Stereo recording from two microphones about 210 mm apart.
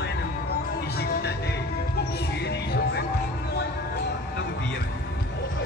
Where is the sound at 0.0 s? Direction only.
50° left (ahead or behind).